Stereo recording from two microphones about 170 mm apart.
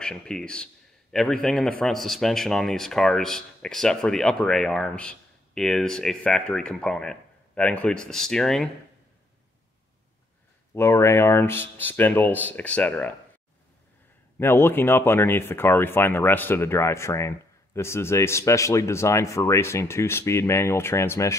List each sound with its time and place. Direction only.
0.0 s speech: 5° left (ahead or behind)
10.7 s speech: 15° left (ahead or behind)
14.4 s speech: 15° left (ahead or behind)